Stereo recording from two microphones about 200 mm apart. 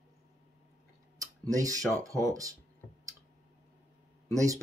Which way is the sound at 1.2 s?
15° right (ahead or behind).